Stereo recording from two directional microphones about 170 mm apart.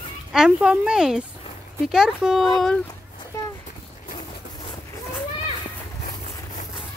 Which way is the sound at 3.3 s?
20° left (ahead or behind).